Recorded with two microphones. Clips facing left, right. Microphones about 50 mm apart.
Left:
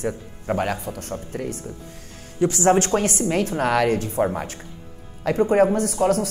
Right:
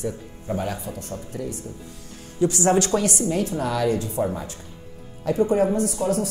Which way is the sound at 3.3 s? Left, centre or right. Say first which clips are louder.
Left 3 dB; left.